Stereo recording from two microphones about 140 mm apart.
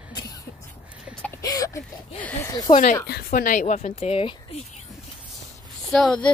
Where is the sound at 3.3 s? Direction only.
70° left (ahead or behind); by 4.3 s 45° left (ahead or behind).